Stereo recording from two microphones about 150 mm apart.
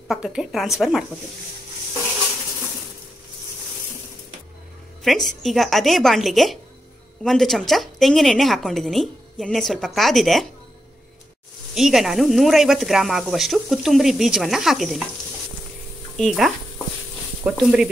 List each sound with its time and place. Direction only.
0.1 s speech: 5° right (ahead or behind)
5.0 s speech: centre (ahead or behind)
11.7 s speech: centre (ahead or behind)
16.2 s speech: centre (ahead or behind)